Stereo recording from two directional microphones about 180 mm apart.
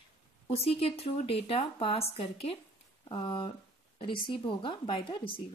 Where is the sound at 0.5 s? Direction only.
35° left (ahead or behind).